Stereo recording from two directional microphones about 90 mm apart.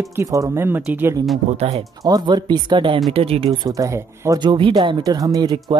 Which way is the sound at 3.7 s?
35° right (ahead or behind).